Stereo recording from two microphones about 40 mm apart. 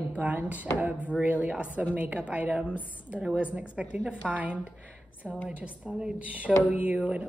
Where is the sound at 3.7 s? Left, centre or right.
Centre.